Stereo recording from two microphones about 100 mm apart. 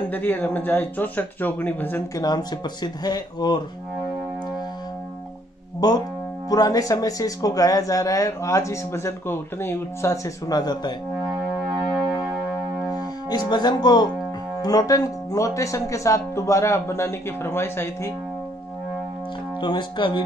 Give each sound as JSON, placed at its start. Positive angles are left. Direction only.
{"t": 0.1, "sound": "speech", "side_deg": 20}
{"t": 2.1, "sound": "speech", "side_deg": 40}
{"t": 5.8, "sound": "speech", "side_deg": 40}
{"t": 12.9, "sound": "speech", "side_deg": 45}
{"t": 19.6, "sound": "speech", "side_deg": 50}